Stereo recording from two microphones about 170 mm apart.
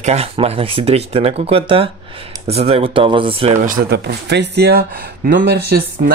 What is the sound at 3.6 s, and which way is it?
Speech, 55° right (ahead or behind).